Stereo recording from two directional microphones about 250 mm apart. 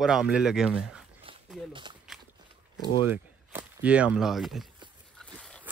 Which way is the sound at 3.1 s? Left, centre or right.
Centre.